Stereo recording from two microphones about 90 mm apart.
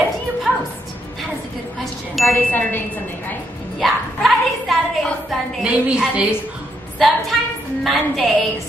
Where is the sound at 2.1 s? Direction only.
Centre (ahead or behind).